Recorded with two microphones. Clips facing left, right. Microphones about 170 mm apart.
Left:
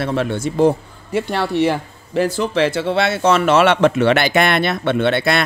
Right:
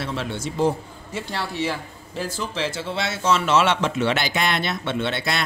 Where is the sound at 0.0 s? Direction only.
55° left (ahead or behind).